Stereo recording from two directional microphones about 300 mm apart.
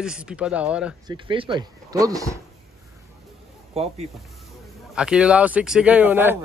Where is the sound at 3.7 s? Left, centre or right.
Right.